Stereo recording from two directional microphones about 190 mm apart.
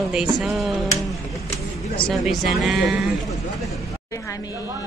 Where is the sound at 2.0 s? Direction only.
Centre (ahead or behind).